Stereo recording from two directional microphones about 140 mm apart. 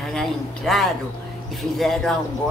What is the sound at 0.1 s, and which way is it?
A man's voice, 5° left (ahead or behind).